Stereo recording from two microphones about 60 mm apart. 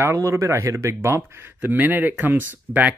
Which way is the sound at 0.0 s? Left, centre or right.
Right.